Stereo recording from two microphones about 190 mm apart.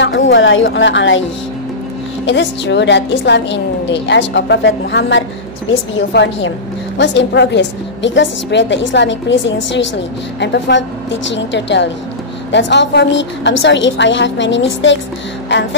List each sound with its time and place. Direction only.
0.0 s a woman's voice: 75° left (ahead or behind)
2.2 s a woman's voice: 70° left (ahead or behind)
7.0 s a woman's voice: 65° left (ahead or behind)